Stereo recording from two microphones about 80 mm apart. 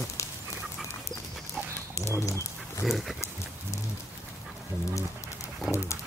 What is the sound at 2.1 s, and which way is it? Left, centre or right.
Dog, left.